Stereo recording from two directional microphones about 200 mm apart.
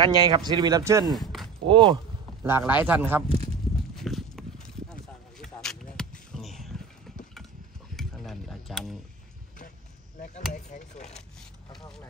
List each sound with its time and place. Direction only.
0.0 s speech: 20° right (ahead or behind)
1.1 s a sound: centre (ahead or behind)
1.7 s speech: 25° right (ahead or behind)
2.4 s a man's voice: 10° right (ahead or behind)
3.9 s horse: centre (ahead or behind)
5.4 s arrow: centre (ahead or behind)
7.9 s a sound: centre (ahead or behind)
10.5 s speech: 35° left (ahead or behind)